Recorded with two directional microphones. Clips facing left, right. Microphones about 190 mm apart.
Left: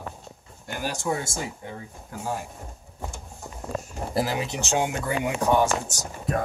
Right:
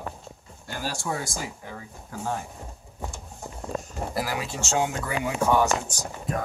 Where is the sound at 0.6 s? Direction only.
20° left (ahead or behind).